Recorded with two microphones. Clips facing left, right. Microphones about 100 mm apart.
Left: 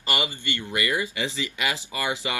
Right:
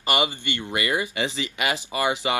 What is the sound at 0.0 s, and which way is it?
Speech, 20° right (ahead or behind).